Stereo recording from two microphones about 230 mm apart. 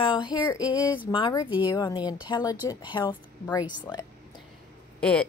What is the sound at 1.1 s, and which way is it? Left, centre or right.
A woman's voice, left.